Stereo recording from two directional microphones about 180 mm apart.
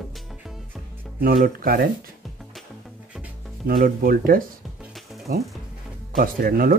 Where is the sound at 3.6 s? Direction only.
55° right (ahead or behind).